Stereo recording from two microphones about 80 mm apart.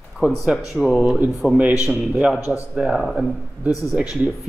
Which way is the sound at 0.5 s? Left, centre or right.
Centre.